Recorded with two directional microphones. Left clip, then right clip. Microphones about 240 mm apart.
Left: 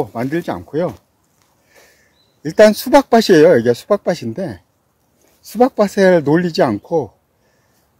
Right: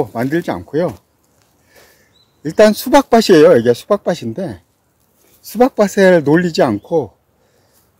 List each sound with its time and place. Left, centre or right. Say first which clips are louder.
0.0 s speech: right 3 dB; centre
1.7 s speech: right 2 dB; centre
5.4 s speech: right 1 dB; centre